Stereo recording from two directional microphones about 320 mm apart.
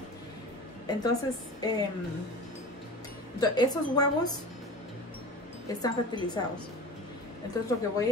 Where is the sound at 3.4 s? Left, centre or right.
Centre.